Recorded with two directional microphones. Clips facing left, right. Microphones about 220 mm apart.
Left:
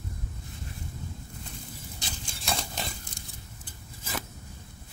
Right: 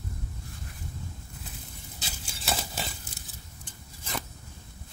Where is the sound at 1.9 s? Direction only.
5° right (ahead or behind).